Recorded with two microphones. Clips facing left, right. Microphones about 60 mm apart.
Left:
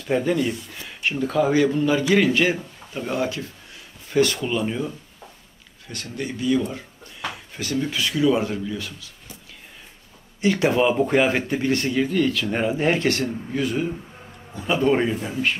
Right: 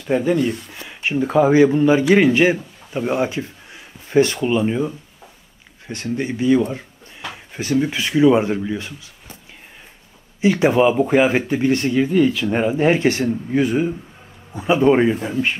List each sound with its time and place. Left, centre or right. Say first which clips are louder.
0.1 s speech: right 4 dB; centre
0.8 s a sound: right 4 dB; centre
1.2 s speech: right 6 dB; right
10.4 s speech: right 4 dB; centre